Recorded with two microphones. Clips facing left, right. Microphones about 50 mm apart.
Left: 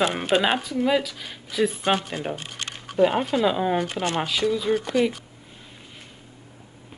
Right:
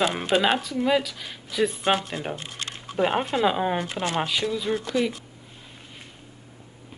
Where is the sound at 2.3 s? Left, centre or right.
Left.